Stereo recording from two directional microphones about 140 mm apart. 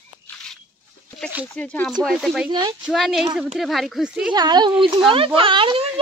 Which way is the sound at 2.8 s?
Centre (ahead or behind).